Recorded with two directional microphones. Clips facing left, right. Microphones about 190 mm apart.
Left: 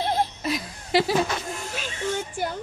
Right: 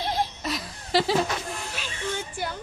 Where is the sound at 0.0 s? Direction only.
55° left (ahead or behind).